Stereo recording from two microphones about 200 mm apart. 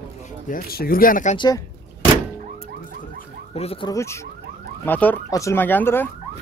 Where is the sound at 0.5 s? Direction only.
45° left (ahead or behind).